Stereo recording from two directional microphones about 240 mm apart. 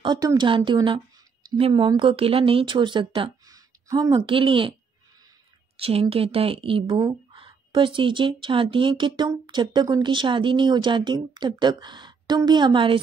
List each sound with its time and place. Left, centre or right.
0.0 s speech: centre
5.8 s speech: right